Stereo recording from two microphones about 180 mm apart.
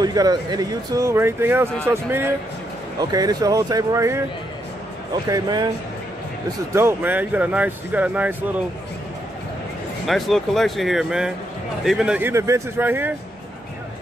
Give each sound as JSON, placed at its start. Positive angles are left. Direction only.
{"t": 0.0, "sound": "speech", "side_deg": -20}
{"t": 5.3, "sound": "speech", "side_deg": -20}
{"t": 6.7, "sound": "speech", "side_deg": -15}
{"t": 10.0, "sound": "speech", "side_deg": 0}